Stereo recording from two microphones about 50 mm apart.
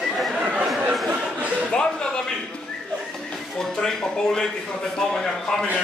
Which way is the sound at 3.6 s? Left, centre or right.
Centre.